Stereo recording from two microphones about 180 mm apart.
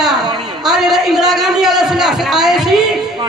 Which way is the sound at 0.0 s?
Centre (ahead or behind).